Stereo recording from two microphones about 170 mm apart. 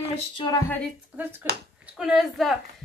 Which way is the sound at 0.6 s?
10° left (ahead or behind).